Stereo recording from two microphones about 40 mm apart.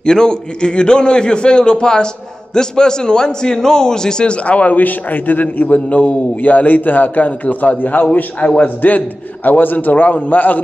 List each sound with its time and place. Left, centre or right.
0.0 s a man's voice: centre
4.5 s a man's voice: left